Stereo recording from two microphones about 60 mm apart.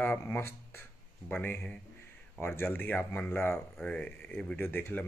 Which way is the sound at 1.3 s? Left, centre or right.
Left.